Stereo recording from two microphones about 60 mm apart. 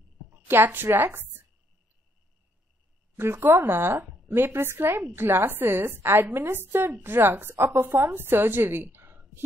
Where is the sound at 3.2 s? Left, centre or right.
Right.